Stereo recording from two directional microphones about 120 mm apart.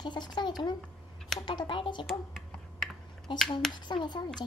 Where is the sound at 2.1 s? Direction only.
Centre (ahead or behind).